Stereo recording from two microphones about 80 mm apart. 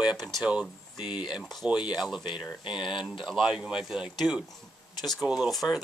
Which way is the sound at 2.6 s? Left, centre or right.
Left.